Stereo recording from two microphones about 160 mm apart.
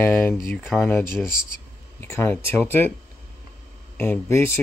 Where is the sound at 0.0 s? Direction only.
10° left (ahead or behind).